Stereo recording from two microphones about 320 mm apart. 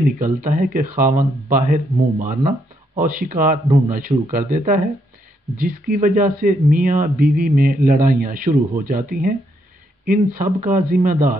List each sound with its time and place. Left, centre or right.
0.2 s speech: right